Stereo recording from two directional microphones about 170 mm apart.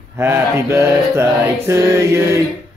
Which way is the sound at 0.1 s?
15° right (ahead or behind).